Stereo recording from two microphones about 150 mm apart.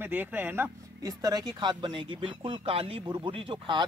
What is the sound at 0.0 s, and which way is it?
Speech, 10° right (ahead or behind).